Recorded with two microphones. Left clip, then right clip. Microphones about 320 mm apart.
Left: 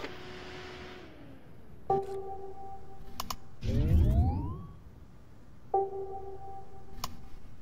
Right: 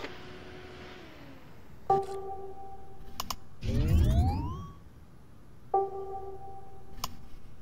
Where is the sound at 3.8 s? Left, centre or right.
Right.